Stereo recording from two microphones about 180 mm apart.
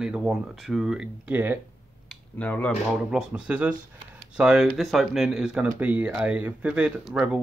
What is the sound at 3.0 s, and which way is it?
Speech, 5° right (ahead or behind).